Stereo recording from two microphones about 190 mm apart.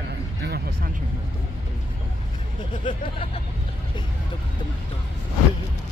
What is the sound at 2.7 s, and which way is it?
Speech, 25° left (ahead or behind).